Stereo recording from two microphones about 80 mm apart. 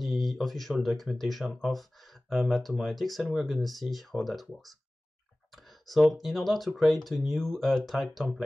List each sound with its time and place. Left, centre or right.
0.0 s speech: centre